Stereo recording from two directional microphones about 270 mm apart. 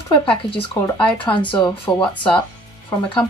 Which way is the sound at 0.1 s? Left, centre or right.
Centre.